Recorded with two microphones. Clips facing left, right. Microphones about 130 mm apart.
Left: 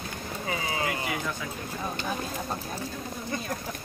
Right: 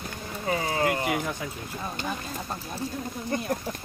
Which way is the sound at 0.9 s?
20° right (ahead or behind).